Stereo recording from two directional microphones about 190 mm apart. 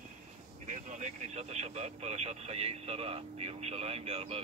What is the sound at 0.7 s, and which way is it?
Speech, 40° right (ahead or behind).